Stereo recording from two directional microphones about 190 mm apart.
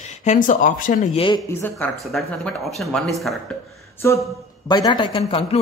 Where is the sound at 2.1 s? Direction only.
Centre (ahead or behind).